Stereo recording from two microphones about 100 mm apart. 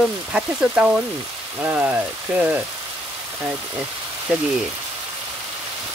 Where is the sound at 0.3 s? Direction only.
10° right (ahead or behind).